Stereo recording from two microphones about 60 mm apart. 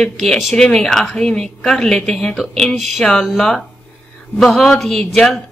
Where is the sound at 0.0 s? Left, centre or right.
Centre.